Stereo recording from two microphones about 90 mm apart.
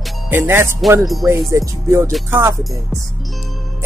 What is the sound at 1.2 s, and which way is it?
Speech, 35° right (ahead or behind).